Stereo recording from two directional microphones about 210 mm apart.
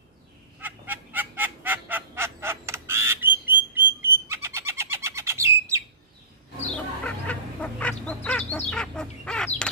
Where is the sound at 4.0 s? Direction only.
10° right (ahead or behind).